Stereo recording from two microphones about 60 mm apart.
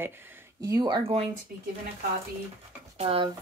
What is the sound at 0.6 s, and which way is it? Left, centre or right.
Speech, right.